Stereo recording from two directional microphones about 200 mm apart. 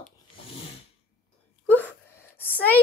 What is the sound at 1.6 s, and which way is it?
Speech, 10° left (ahead or behind).